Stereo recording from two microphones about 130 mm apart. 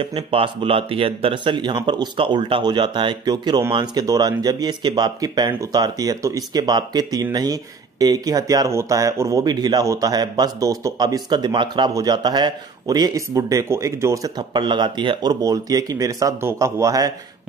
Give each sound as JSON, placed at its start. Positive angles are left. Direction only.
{"t": 0.0, "sound": "speech", "side_deg": -45}